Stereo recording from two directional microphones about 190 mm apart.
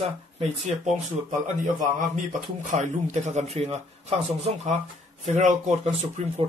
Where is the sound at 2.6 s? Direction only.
40° right (ahead or behind).